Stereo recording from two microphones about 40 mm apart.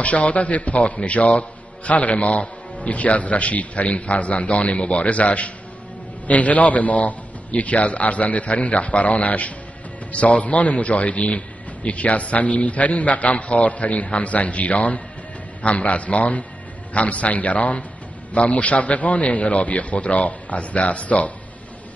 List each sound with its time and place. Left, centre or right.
0.0 s a man's voice: left